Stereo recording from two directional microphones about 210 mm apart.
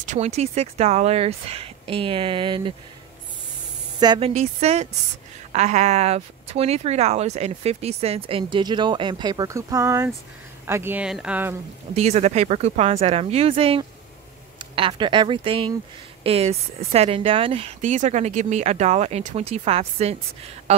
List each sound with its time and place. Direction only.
0.0 s speech: 35° right (ahead or behind)
4.0 s speech: 20° right (ahead or behind)
4.3 s speech: 30° right (ahead or behind); by 11.5 s 5° right (ahead or behind)
11.9 s speech: 30° right (ahead or behind)